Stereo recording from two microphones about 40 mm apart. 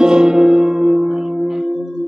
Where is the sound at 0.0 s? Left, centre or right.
Centre.